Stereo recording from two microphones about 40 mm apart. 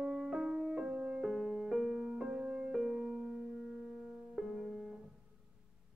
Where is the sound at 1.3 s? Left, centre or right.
Centre; by 4.1 s right.